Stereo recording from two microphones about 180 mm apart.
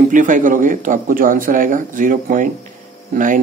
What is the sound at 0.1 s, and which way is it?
Speech, 45° right (ahead or behind).